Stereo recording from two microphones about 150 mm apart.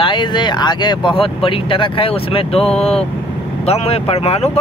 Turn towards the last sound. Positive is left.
turn(degrees=40)  # may be behind; listen again after turning